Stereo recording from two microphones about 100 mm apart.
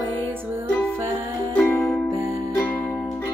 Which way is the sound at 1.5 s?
20° left (ahead or behind).